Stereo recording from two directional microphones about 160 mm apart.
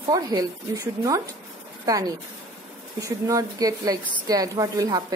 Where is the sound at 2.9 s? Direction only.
20° right (ahead or behind).